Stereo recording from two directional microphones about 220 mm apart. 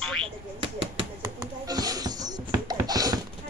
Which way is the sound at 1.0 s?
15° right (ahead or behind).